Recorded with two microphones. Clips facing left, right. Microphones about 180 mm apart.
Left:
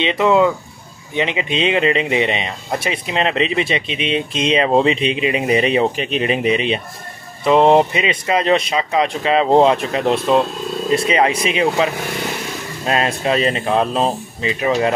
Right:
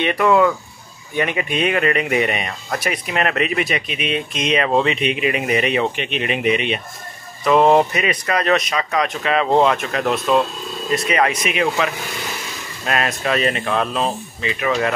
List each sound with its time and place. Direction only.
0.0 s speech: 20° left (ahead or behind)